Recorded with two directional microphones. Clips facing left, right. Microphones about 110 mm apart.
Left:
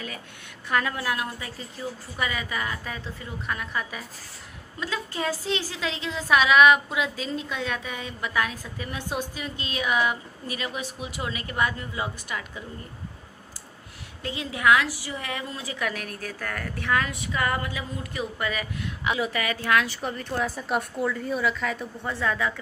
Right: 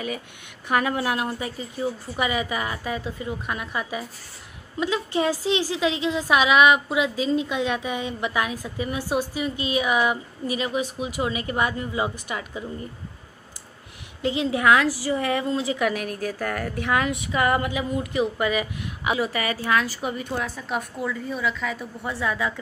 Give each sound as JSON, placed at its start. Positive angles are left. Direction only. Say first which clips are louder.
{"t": 0.7, "sound": "a woman's voice", "louder": "right 4 dB", "side_deg": -15}
{"t": 14.2, "sound": "a woman's voice", "louder": "right 4 dB", "side_deg": -20}
{"t": 15.8, "sound": "a woman's voice", "louder": "right 6 dB", "side_deg": -10}
{"t": 19.6, "sound": "a woman's voice", "louder": "even", "side_deg": 0}
{"t": 20.3, "sound": "a woman's voice", "louder": "left 1 dB", "side_deg": 5}
{"t": 22.0, "sound": "a woman's voice", "louder": "right 1 dB", "side_deg": -15}